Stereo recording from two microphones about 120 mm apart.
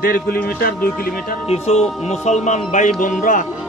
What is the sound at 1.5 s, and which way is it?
Speech, 65° left (ahead or behind).